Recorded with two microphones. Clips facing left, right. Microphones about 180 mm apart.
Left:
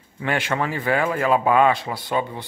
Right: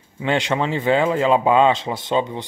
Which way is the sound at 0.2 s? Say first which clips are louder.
Right 3 dB; 20° right (ahead or behind).